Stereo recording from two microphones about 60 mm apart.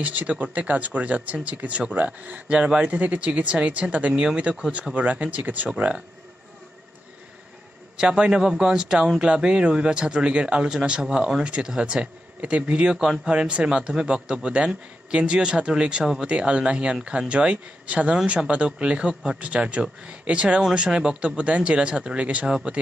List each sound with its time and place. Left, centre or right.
0.0 s speech: right
8.0 s speech: centre